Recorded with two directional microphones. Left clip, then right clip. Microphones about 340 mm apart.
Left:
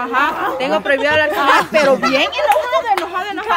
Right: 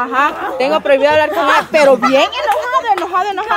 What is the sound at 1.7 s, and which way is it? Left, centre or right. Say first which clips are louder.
A woman's voice: right 4 dB; centre.